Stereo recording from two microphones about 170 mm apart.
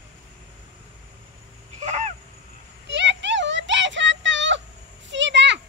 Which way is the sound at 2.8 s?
90° right.